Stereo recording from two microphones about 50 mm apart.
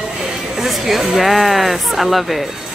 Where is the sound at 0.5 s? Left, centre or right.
Centre.